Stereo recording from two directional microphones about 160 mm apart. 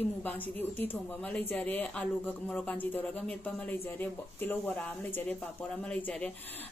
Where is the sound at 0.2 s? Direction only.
10° left (ahead or behind).